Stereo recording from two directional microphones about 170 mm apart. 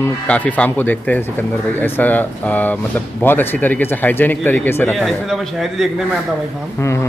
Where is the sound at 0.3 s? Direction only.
10° left (ahead or behind).